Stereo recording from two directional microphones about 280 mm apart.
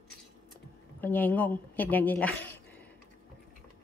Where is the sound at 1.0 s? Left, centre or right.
Centre.